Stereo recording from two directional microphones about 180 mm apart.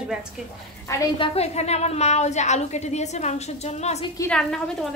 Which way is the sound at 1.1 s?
30° left (ahead or behind).